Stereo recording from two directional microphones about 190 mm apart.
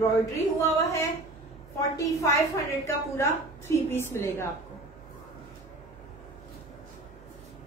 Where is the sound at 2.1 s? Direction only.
15° left (ahead or behind).